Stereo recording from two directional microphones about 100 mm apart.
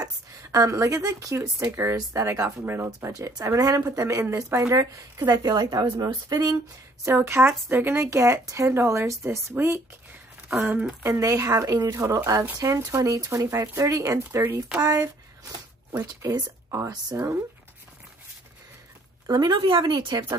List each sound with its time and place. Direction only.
0.0 s speech: 35° right (ahead or behind)
3.1 s speech: 35° right (ahead or behind)
7.1 s speech: 25° right (ahead or behind)
10.6 s speech: 15° right (ahead or behind); by 14.4 s 35° right (ahead or behind)
14.4 s speech: 20° right (ahead or behind)
14.8 s speech: 40° right (ahead or behind)
15.9 s speech: 25° right (ahead or behind)
19.2 s speech: 40° right (ahead or behind)
19.5 s speech: 55° right (ahead or behind)